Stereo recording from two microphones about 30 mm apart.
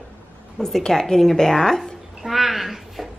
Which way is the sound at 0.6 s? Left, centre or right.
Centre.